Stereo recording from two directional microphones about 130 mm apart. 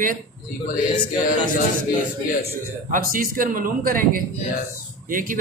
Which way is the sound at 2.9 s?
90° right.